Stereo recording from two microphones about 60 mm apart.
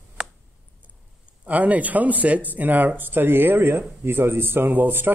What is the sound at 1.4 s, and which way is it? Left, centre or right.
Speech, right.